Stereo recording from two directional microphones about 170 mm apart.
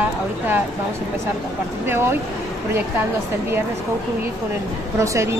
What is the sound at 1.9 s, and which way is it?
Speech, 15° right (ahead or behind).